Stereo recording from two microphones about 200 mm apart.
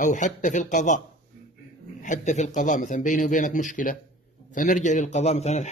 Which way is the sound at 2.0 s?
40° left (ahead or behind).